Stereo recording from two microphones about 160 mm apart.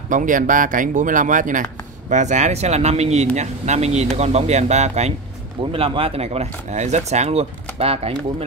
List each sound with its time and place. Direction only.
0.1 s speech: 55° right (ahead or behind); by 8.5 s 40° right (ahead or behind)